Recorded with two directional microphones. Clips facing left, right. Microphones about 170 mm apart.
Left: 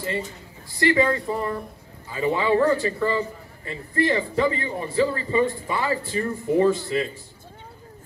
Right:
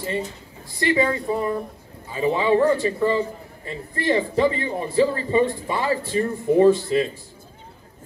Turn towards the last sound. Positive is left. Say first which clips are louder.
# right 4 dB
turn(degrees=-25)  # may be behind; listen again after turning